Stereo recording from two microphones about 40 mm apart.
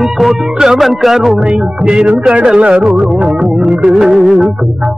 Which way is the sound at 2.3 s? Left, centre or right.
Right.